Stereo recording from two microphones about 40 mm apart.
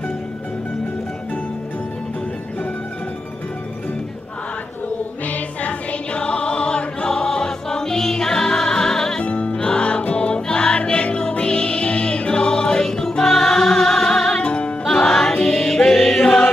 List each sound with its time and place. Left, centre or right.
5.2 s music: left; by 9.2 s centre
9.2 s music: left; by 14.4 s centre
14.4 s music: left
14.9 s music: centre